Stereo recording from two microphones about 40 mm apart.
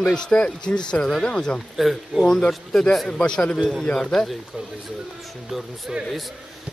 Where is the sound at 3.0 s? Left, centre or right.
Left.